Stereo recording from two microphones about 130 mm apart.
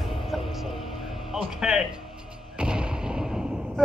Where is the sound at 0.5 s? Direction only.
Centre (ahead or behind).